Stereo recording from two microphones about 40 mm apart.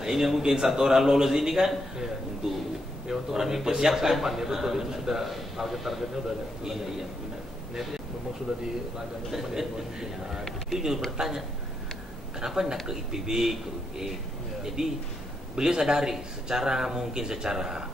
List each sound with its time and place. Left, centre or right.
0.0 s a man's voice: centre
3.1 s a man's voice: centre